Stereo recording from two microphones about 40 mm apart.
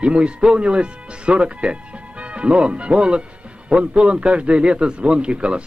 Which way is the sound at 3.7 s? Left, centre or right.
Right.